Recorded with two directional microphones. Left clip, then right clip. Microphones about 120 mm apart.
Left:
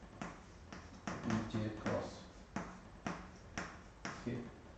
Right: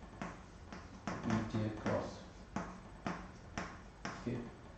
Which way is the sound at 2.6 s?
Centre (ahead or behind).